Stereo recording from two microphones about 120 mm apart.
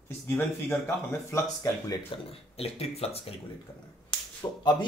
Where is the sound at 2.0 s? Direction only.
55° left (ahead or behind).